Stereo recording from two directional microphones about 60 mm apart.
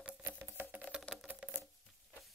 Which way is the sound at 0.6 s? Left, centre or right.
Right.